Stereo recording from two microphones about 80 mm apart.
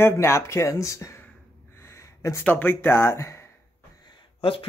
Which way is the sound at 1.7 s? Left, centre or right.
Left.